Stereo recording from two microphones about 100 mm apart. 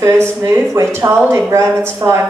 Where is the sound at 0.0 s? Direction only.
25° right (ahead or behind).